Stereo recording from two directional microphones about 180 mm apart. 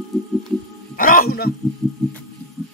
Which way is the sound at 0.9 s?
50° left (ahead or behind).